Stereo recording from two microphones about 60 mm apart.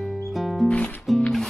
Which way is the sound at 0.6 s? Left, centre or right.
Left.